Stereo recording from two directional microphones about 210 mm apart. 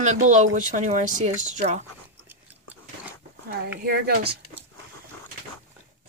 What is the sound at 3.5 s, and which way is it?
Speech, 50° right (ahead or behind).